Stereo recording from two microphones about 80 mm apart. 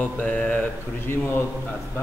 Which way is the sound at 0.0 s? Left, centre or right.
Centre.